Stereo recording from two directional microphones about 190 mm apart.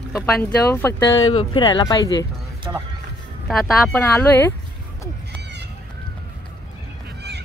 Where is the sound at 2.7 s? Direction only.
20° right (ahead or behind).